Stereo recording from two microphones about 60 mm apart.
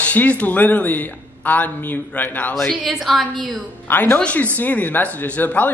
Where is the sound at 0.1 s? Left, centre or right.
Left.